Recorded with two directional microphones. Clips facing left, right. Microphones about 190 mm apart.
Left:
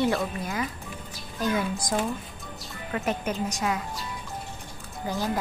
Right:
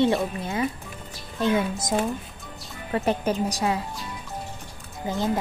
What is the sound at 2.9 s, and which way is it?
Speech, 35° right (ahead or behind).